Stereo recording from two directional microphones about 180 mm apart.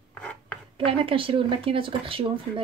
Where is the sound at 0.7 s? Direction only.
30° right (ahead or behind).